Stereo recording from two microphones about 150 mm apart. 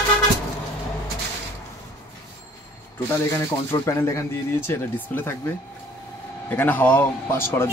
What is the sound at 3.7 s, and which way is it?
Speech, 20° left (ahead or behind).